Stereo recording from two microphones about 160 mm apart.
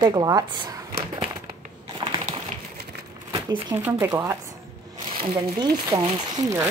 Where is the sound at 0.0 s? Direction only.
25° right (ahead or behind).